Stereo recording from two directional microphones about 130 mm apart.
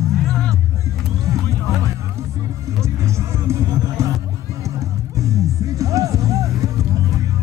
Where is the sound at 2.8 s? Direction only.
20° right (ahead or behind).